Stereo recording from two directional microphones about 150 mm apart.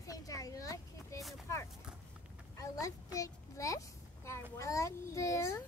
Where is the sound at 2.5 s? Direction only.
20° left (ahead or behind).